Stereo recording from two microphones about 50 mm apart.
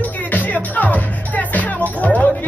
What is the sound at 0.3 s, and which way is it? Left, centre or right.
Music, left.